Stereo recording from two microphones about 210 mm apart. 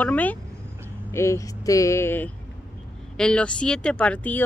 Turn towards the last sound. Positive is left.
turn(degrees=5)  # may be behind; listen again after turning